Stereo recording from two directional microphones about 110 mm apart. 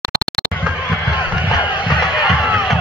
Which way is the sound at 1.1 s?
45° left (ahead or behind).